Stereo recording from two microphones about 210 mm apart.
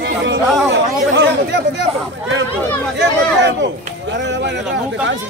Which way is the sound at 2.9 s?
55° right (ahead or behind).